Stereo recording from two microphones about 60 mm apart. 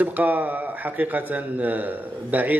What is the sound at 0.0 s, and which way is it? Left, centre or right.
A man's voice, right.